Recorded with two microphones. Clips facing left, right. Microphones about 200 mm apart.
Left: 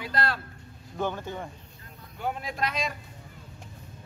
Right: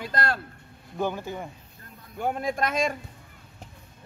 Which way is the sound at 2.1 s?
50° right (ahead or behind).